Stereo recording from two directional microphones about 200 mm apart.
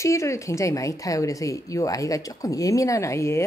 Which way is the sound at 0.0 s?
15° left (ahead or behind).